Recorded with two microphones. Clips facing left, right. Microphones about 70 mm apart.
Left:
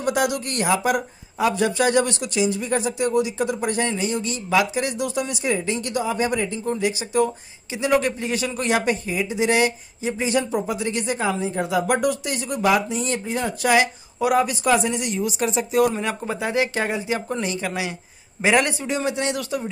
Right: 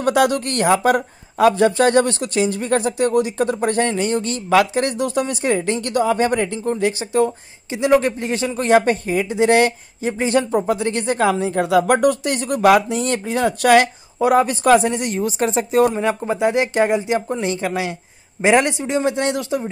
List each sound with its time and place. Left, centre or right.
0.0 s speech: right
6.7 s speech: right
7.7 s speech: right
11.1 s speech: right
12.0 s speech: right
14.2 s speech: right
16.0 s speech: right